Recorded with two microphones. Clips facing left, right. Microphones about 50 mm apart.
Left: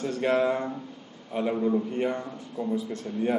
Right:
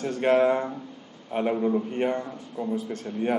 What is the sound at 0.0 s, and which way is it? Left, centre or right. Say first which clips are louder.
Speech: right 3 dB; right.